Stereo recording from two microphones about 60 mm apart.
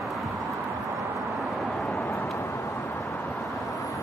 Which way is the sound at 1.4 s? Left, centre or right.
Centre.